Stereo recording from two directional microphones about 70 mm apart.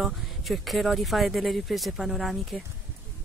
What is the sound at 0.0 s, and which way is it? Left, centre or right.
Speech, centre.